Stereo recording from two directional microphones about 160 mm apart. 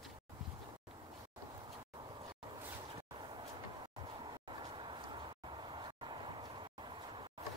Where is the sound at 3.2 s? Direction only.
30° right (ahead or behind).